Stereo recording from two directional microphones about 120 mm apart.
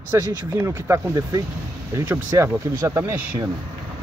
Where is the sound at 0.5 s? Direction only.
20° right (ahead or behind).